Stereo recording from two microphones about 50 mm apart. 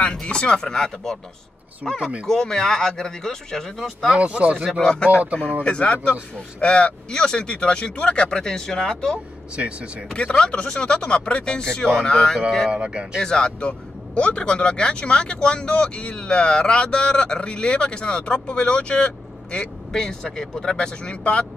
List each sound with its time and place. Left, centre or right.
0.0 s speech: centre
4.2 s speech: right
4.6 s speech: centre
9.6 s speech: right
10.1 s speech: centre
12.7 s speech: centre
13.2 s speech: centre